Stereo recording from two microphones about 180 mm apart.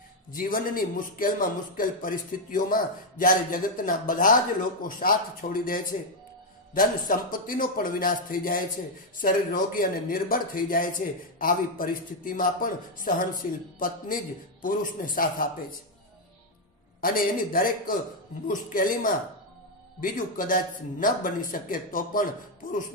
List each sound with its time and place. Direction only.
0.3 s a man's voice: 50° left (ahead or behind)
17.0 s a man's voice: 50° left (ahead or behind)